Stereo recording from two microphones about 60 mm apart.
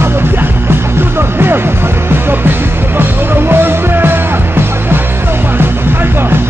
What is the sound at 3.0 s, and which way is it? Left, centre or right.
Music, right.